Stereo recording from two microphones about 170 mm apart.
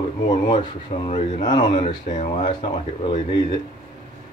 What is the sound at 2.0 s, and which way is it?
Speech, 45° left (ahead or behind).